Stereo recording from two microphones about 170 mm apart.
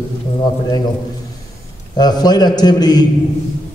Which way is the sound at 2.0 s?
25° left (ahead or behind).